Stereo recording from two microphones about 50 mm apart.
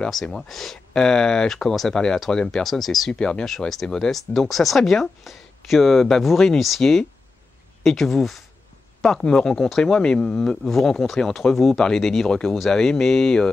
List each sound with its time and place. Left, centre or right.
0.1 s speech: centre
3.1 s speech: centre
3.4 s speech: centre
9.2 s speech: centre